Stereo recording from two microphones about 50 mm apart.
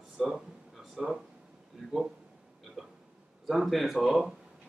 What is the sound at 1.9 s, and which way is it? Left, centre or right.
Speech, centre.